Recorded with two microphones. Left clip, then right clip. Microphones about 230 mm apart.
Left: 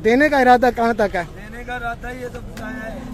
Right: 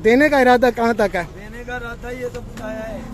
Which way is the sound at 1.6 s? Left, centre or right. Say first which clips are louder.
Left 2 dB; centre.